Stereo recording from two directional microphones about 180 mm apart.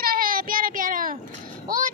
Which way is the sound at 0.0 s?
55° right (ahead or behind).